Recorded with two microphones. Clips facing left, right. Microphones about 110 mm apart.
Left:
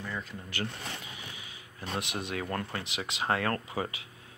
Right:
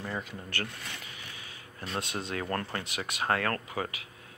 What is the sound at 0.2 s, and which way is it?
Speech, 5° right (ahead or behind).